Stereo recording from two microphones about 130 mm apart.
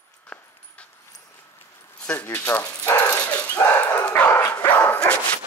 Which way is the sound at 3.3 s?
10° left (ahead or behind).